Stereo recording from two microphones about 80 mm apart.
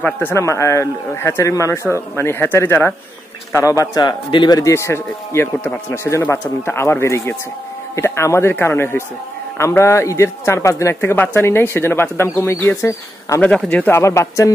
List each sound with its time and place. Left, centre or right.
0.0 s a man's voice: left
0.4 s speech: left
4.0 s a man's voice: left
4.6 s speech: left
6.0 s a man's voice: left
13.3 s speech: left